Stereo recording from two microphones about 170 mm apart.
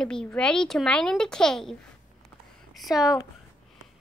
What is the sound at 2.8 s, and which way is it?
Speech, centre (ahead or behind).